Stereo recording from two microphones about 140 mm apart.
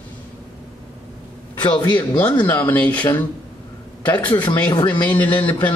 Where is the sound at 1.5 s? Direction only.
35° left (ahead or behind).